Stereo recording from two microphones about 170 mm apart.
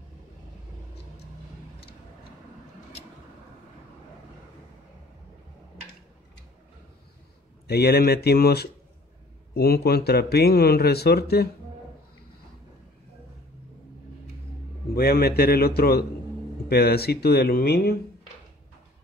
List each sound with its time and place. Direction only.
7.6 s speech: 70° left (ahead or behind)
15.0 s a man's voice: 65° left (ahead or behind)